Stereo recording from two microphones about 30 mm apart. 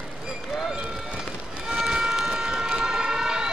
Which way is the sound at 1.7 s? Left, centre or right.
Right.